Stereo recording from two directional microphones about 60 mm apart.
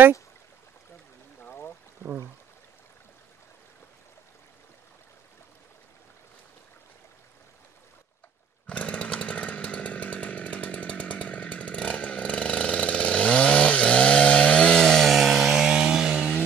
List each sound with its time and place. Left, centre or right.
1.4 s a sound: left
2.0 s speech: left
8.6 s chainsaw: left
15.0 s chainsaw: centre